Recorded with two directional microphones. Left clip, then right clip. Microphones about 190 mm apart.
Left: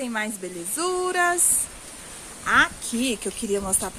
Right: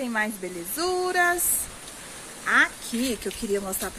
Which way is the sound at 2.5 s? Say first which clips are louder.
Left 2 dB; 15° left (ahead or behind).